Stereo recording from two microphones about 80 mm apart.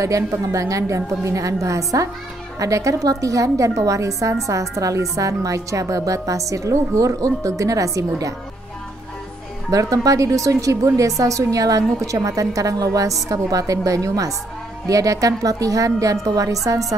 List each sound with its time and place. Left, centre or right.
0.0 s speech: right
9.7 s speech: right